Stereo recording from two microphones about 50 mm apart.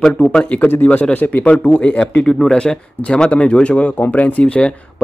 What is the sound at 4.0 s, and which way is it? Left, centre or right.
Speech, left.